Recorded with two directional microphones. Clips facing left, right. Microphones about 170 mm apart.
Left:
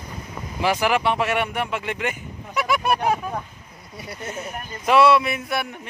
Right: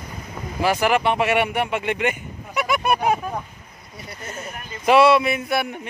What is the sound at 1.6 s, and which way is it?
Speech, 65° right (ahead or behind).